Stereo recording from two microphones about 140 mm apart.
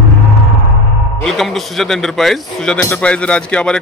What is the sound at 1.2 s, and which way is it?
Speech, centre (ahead or behind).